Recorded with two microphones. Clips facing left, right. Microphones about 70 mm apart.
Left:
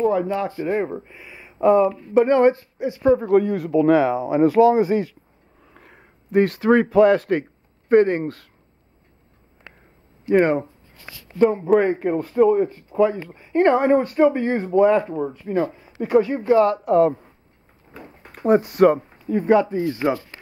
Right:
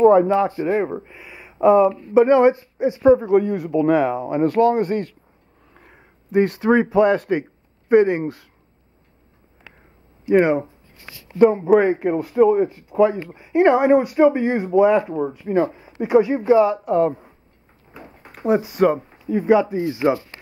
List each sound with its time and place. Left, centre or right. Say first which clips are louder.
0.7 s speech: right 2 dB; centre
2.1 s speech: right 2 dB; centre
3.2 s speech: even; centre
10.2 s speech: right 1 dB; centre
17.9 s a sound: even; centre
18.3 s speech: left 2 dB; centre